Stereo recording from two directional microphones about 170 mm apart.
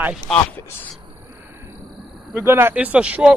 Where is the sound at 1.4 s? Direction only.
15° right (ahead or behind).